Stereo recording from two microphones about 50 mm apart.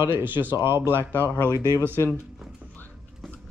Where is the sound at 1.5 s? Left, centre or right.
Left.